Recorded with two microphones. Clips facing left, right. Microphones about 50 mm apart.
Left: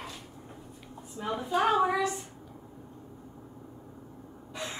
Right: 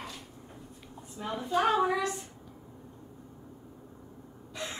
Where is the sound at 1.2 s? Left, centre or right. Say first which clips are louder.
Left 1 dB; centre.